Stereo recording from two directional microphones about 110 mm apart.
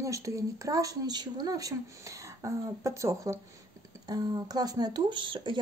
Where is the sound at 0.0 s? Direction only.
30° right (ahead or behind).